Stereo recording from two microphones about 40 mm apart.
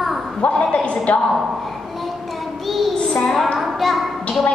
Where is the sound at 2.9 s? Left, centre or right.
Left.